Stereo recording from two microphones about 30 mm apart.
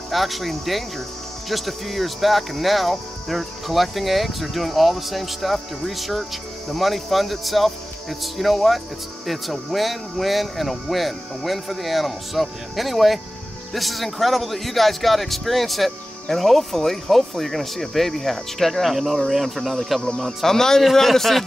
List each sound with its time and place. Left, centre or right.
0.1 s speech: centre
20.4 s speech: centre